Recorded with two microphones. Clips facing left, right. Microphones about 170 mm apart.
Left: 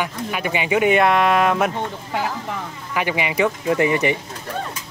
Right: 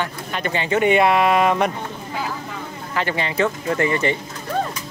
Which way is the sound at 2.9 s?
15° left (ahead or behind).